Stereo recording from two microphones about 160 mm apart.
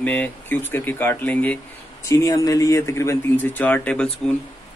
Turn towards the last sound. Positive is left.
turn(degrees=5)  # may be behind; listen again after turning